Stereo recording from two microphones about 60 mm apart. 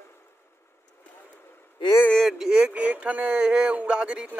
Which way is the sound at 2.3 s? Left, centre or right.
Centre.